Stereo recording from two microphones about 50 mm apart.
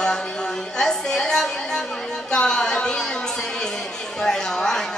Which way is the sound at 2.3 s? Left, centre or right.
Centre.